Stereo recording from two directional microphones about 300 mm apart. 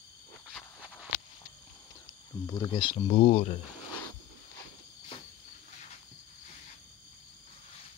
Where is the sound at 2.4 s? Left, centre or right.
Centre.